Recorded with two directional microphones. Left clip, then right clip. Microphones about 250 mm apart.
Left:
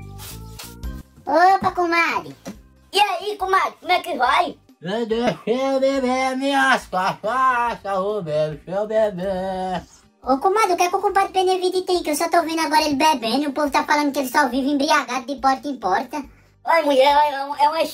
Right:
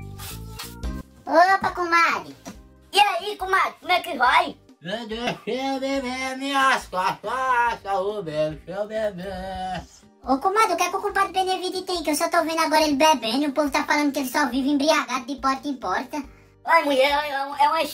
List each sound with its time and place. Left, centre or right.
0.2 s music: centre
1.4 s speech: centre
4.8 s speech: centre
10.2 s speech: centre